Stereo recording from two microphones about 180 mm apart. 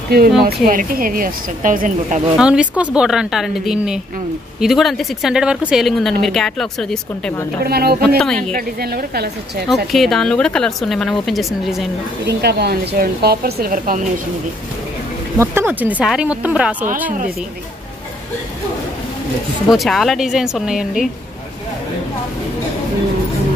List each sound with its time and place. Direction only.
0.4 s speech: 50° right (ahead or behind)
2.3 s a woman's voice: 5° right (ahead or behind)
7.6 s speech: 60° right (ahead or behind)
8.2 s a woman's voice: 5° left (ahead or behind)
8.5 s speech: 60° right (ahead or behind)
9.9 s a woman's voice: centre (ahead or behind)
12.3 s speech: 65° right (ahead or behind); by 14.2 s 50° right (ahead or behind)
15.3 s speech: 15° right (ahead or behind)
19.7 s a woman's voice: centre (ahead or behind)